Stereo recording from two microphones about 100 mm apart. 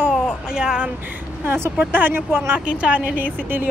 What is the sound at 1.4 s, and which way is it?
A woman's voice, 25° right (ahead or behind).